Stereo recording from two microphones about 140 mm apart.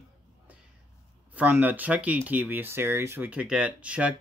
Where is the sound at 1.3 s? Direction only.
15° right (ahead or behind).